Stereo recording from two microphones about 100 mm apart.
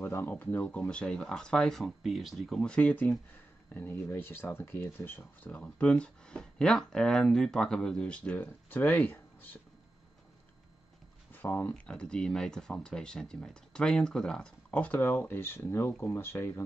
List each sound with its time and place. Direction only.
0.0 s speech: 20° left (ahead or behind)
11.3 s speech: 20° left (ahead or behind)
11.7 s speech: 10° left (ahead or behind)